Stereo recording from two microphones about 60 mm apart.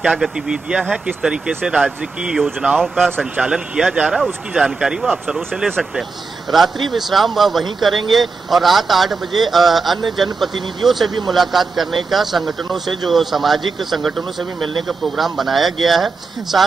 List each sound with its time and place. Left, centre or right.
0.1 s speech: centre
6.5 s speech: centre